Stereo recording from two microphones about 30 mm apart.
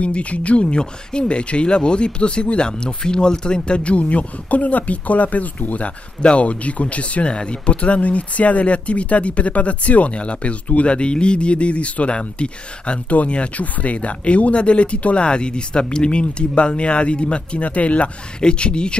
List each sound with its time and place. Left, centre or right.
0.0 s speech: left
3.8 s speech: left
6.2 s speech: left
7.2 s speech: left
7.7 s speech: left
10.1 s speech: left
13.6 s speech: left
18.4 s speech: left